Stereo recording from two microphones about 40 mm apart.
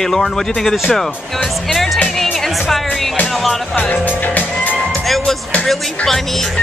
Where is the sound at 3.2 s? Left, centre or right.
Centre.